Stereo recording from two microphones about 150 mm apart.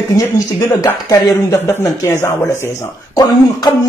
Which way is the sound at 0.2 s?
25° left (ahead or behind).